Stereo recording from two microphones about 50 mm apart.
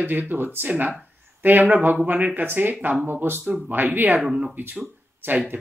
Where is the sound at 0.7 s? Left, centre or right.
Right.